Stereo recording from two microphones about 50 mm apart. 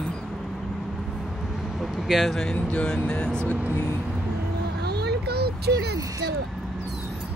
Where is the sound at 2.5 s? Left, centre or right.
Left.